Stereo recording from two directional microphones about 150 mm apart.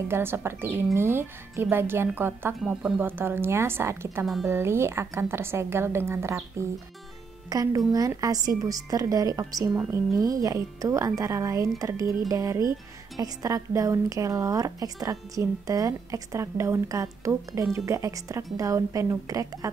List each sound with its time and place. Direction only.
0.1 s a woman's voice: 15° right (ahead or behind)
2.6 s speech: 5° right (ahead or behind)
3.0 s a woman's voice: 15° right (ahead or behind)
7.4 s a woman's voice: 25° right (ahead or behind)